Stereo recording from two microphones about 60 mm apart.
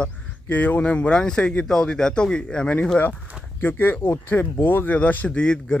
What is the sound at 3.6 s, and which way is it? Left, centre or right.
Speech, left.